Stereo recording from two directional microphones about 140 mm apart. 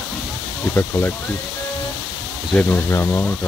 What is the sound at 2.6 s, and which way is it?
Speech, 15° left (ahead or behind).